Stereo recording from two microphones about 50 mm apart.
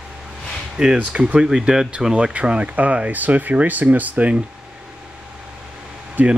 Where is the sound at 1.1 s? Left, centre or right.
Right.